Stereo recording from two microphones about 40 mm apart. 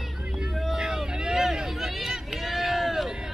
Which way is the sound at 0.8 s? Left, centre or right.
Centre.